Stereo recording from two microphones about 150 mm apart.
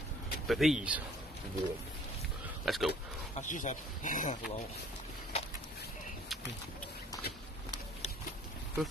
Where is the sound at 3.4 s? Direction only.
55° left (ahead or behind).